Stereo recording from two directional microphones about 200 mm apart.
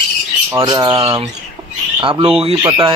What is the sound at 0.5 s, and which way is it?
Squawk, 20° right (ahead or behind).